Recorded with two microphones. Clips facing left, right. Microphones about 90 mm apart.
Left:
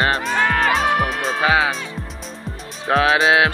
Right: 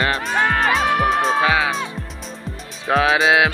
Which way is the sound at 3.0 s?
35° left (ahead or behind).